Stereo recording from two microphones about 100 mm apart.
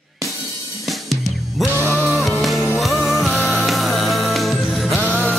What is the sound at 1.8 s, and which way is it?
Music, 20° right (ahead or behind).